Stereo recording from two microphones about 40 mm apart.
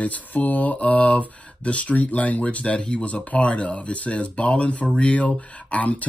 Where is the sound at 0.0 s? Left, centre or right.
Left.